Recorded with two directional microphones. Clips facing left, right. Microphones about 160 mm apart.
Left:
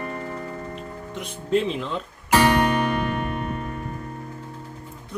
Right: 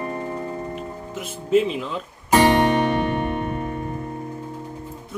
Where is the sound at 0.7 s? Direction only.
5° right (ahead or behind).